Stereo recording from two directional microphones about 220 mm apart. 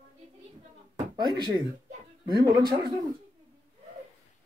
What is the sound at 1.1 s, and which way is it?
Speech, 20° right (ahead or behind).